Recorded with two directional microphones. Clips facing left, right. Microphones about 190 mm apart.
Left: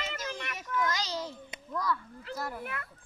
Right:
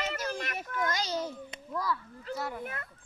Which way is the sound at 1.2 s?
5° right (ahead or behind).